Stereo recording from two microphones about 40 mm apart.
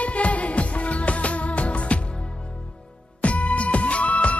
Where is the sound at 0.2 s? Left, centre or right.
Left.